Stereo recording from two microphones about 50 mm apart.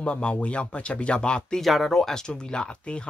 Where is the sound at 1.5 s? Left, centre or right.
Centre.